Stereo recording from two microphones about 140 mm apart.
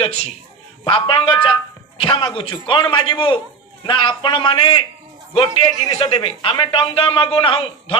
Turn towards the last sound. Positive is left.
turn(degrees=40)  # may be behind; listen again after turning